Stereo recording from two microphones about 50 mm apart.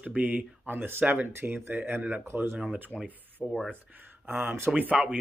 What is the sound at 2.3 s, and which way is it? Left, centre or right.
Speech, right.